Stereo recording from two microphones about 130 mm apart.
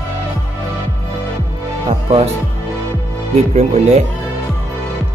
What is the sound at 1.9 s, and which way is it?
Speech, 50° right (ahead or behind).